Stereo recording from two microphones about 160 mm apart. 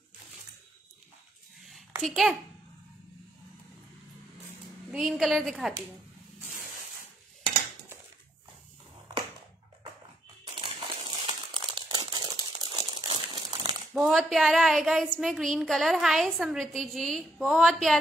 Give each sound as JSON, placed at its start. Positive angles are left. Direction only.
{"t": 1.6, "sound": "a sound", "side_deg": 0}
{"t": 2.0, "sound": "a woman's voice", "side_deg": 0}
{"t": 4.9, "sound": "a woman's voice", "side_deg": 0}
{"t": 10.4, "sound": "crumpling", "side_deg": -30}
{"t": 13.9, "sound": "a woman's voice", "side_deg": 0}